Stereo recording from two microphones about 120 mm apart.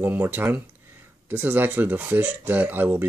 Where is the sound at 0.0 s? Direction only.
15° right (ahead or behind).